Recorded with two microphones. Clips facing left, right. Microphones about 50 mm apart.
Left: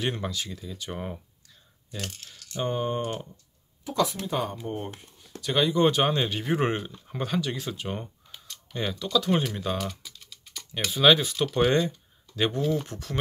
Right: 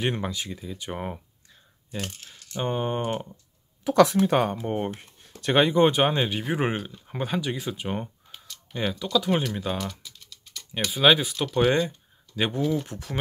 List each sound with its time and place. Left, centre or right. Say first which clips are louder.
0.0 s speech: right 2 dB; right
3.8 s speech: right 8 dB; right
5.9 s speech: right 1 dB; centre
9.8 s typing: even; centre
10.9 s speech: even; centre